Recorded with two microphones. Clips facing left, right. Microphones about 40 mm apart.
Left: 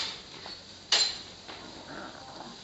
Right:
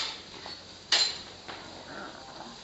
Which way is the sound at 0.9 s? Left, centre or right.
Centre.